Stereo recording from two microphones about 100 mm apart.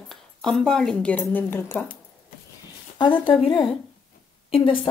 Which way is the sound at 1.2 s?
20° left (ahead or behind).